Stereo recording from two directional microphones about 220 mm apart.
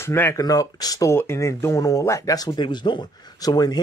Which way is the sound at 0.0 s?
10° left (ahead or behind).